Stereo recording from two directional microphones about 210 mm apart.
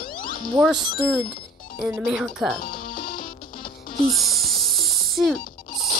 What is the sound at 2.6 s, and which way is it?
Music, 45° left (ahead or behind).